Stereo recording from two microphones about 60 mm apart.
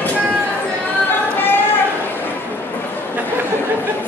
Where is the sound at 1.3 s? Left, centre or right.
Left.